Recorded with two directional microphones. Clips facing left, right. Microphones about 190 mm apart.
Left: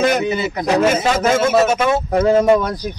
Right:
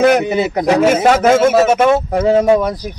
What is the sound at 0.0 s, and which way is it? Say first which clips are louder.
Speech: right 5 dB; 60° right (ahead or behind).